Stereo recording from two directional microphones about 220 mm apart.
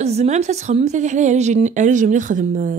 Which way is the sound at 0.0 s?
30° right (ahead or behind).